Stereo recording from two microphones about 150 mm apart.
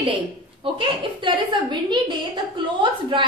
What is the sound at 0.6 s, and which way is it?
A woman's voice, 35° right (ahead or behind).